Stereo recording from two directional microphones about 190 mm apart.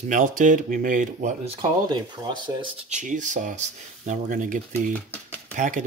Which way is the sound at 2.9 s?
40° right (ahead or behind).